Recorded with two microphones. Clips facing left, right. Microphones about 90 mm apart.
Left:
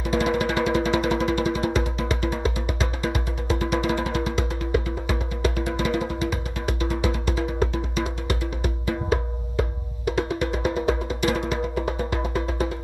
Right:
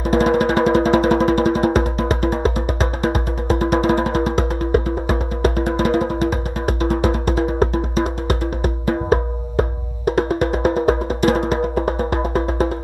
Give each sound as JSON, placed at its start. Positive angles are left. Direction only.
{"t": 0.1, "sound": "music", "side_deg": -45}